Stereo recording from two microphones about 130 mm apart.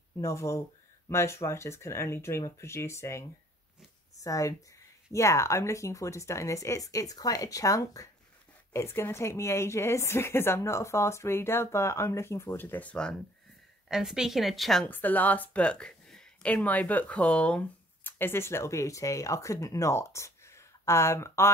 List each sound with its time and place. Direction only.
0.2 s a woman's voice: 25° left (ahead or behind)
13.8 s a woman's voice: 5° right (ahead or behind)
14.9 s speech: 15° left (ahead or behind)